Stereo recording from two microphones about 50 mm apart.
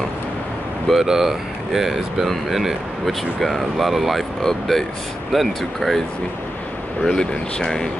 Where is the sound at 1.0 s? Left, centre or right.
Centre.